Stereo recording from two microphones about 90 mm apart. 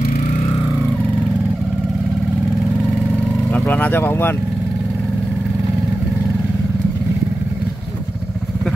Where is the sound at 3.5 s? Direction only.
20° left (ahead or behind).